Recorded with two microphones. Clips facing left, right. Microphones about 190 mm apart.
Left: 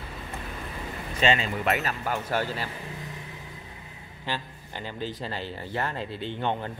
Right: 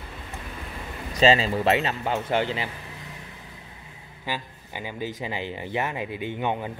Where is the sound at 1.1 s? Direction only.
35° right (ahead or behind); by 2.7 s 20° right (ahead or behind).